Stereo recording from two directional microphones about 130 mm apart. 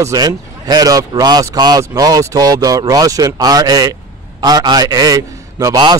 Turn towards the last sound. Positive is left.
turn(degrees=-30)  # may be behind; listen again after turning